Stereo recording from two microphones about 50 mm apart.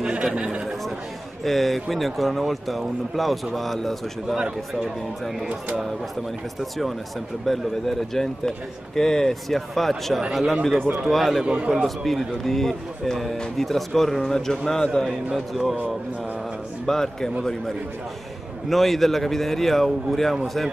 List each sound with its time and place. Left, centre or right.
0.2 s speech: centre
1.4 s speech: centre
4.4 s speech: centre
7.4 s speech: centre
11.4 s a man's voice: right
11.8 s speech: centre
15.3 s speech: centre
16.8 s a man's voice: centre
18.7 s speech: centre